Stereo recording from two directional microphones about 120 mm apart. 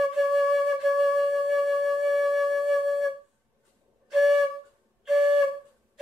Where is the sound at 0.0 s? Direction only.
Centre (ahead or behind).